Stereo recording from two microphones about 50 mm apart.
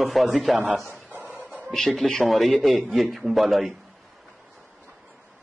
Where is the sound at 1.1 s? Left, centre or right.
Right.